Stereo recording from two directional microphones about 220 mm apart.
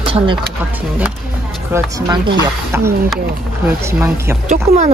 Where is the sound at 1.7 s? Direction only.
15° right (ahead or behind).